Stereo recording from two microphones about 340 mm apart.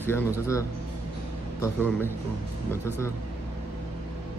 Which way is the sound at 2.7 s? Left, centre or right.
Centre.